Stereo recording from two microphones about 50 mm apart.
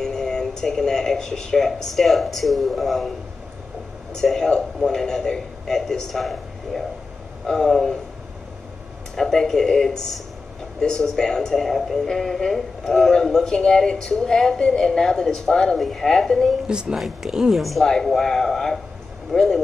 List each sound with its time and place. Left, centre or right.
0.0 s speech: centre
4.1 s speech: centre
9.1 s a woman's voice: centre
16.6 s a woman's voice: centre